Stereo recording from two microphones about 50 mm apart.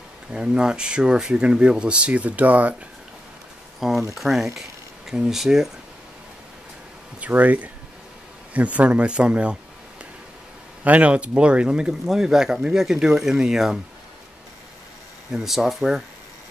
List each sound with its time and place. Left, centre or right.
0.3 s speech: centre
4.1 s speech: centre
7.2 s speech: right
10.8 s speech: right
11.9 s speech: centre
15.3 s speech: centre